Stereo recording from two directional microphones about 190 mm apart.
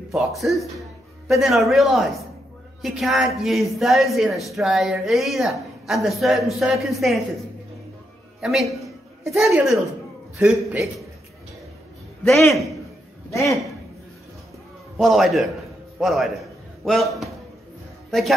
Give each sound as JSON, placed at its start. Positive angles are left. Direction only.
{"t": 0.1, "sound": "a man's voice", "side_deg": 0}
{"t": 8.4, "sound": "a man's voice", "side_deg": 0}
{"t": 12.3, "sound": "a man's voice", "side_deg": 0}
{"t": 13.3, "sound": "a man's voice", "side_deg": 15}
{"t": 15.0, "sound": "a man's voice", "side_deg": 0}